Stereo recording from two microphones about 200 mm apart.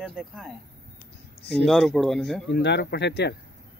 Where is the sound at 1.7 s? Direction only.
Centre (ahead or behind).